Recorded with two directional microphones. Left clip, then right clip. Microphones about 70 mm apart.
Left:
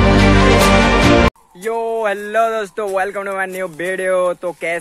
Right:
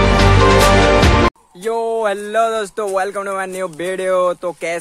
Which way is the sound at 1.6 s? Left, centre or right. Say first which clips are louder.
Right 1 dB; right.